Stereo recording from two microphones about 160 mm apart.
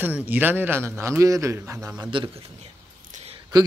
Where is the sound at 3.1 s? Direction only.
40° right (ahead or behind).